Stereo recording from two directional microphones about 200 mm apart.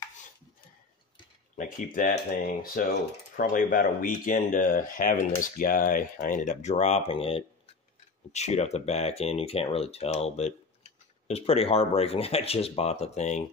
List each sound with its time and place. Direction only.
1.6 s speech: 40° left (ahead or behind)